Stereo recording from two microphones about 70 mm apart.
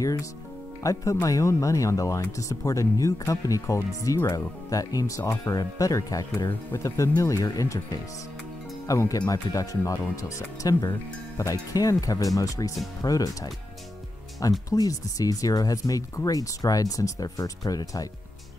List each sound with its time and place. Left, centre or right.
0.0 s speech: left
8.8 s speech: left
14.7 s speech: left